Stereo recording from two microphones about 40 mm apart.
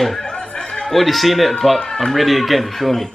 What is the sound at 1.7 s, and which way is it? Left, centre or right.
Speech, centre.